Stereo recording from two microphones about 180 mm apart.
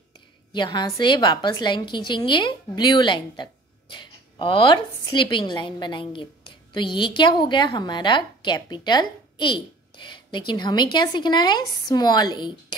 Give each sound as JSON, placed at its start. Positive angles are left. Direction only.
{"t": 0.5, "sound": "a woman's voice", "side_deg": 25}